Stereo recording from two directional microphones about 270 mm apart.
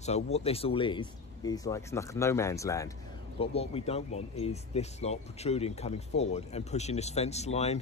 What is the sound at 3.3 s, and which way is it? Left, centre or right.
Speech, left.